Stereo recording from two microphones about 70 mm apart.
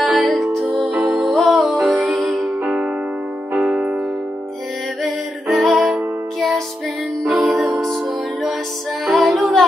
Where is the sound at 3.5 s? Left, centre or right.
Centre.